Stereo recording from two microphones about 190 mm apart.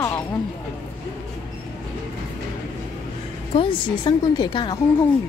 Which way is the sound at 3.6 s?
25° left (ahead or behind).